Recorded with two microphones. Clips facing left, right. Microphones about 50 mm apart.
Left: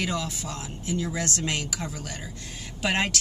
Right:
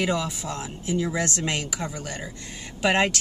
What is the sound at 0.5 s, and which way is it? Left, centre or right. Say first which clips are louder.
Speech: right 3 dB; right.